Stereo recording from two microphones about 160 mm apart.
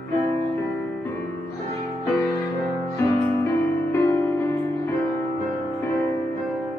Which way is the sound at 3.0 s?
20° left (ahead or behind).